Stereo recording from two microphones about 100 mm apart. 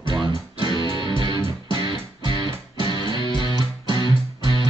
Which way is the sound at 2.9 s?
50° left (ahead or behind).